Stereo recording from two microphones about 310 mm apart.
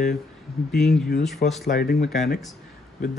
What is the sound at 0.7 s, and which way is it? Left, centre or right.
Speech, centre.